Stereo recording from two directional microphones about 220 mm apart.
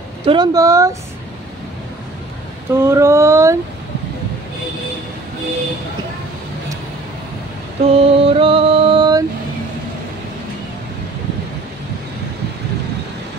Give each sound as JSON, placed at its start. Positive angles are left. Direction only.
{"t": 0.2, "sound": "speech", "side_deg": -20}
{"t": 2.7, "sound": "a sound", "side_deg": -10}
{"t": 7.9, "sound": "music", "side_deg": -25}